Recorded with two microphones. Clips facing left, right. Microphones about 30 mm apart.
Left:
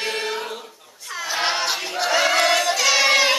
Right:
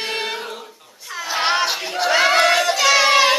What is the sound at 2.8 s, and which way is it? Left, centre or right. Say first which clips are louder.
Music: right 3 dB; centre.